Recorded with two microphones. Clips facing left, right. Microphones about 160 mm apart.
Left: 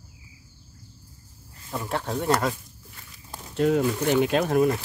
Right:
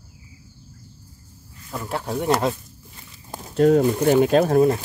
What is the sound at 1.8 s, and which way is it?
Speech, 5° right (ahead or behind).